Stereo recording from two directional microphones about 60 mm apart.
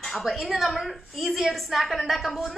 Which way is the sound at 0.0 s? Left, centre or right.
Centre.